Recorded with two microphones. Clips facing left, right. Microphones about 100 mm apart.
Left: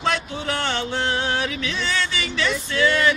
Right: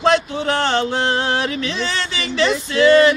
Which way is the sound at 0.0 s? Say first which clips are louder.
Right 8 dB; 35° right (ahead or behind).